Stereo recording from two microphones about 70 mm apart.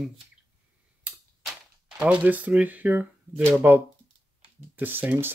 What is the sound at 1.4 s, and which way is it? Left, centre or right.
Speech, centre.